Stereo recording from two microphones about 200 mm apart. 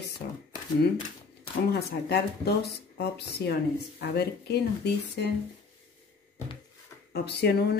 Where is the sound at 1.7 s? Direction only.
50° left (ahead or behind).